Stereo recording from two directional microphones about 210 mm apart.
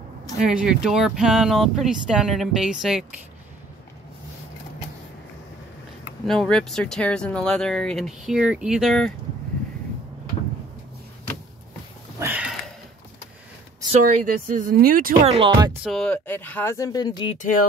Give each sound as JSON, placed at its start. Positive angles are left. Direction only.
{"t": 0.4, "sound": "speech", "side_deg": -5}
{"t": 6.2, "sound": "speech", "side_deg": 0}
{"t": 12.2, "sound": "a sound", "side_deg": -5}
{"t": 14.0, "sound": "speech", "side_deg": -40}
{"t": 15.3, "sound": "speech", "side_deg": -25}
{"t": 15.8, "sound": "speech", "side_deg": 0}